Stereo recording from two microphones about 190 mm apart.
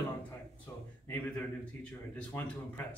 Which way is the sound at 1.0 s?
5° left (ahead or behind).